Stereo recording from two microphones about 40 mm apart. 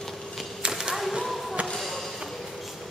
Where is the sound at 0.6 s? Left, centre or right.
Centre.